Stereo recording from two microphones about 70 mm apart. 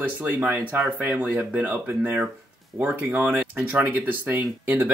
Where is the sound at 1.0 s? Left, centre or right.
Right.